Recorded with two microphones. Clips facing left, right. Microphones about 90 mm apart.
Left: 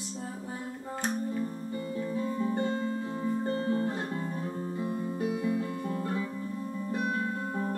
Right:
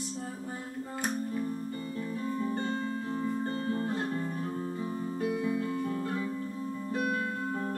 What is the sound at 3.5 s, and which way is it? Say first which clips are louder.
Music: left 3 dB; 20° left (ahead or behind).